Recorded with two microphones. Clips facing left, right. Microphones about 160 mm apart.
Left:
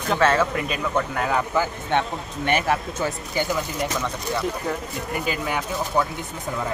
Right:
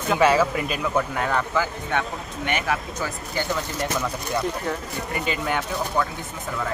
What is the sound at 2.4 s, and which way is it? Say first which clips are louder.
Speech: left 4 dB; 30° left (ahead or behind).